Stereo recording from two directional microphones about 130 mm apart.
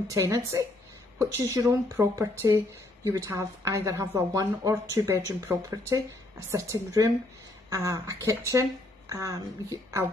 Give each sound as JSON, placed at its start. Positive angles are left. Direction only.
{"t": 0.1, "sound": "speech", "side_deg": -25}